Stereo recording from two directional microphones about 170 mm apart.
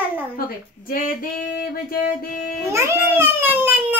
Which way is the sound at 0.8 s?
55° left (ahead or behind).